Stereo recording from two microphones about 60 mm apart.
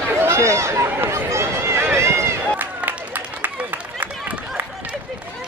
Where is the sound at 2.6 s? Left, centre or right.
Right.